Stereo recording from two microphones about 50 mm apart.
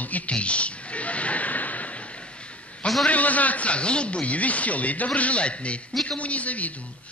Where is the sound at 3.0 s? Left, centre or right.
Left.